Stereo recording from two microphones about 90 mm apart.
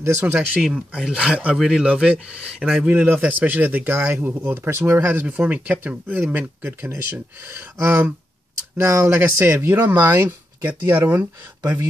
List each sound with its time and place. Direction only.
0.2 s speech: 15° right (ahead or behind)
0.6 s speech: 5° right (ahead or behind); by 11.1 s 20° right (ahead or behind)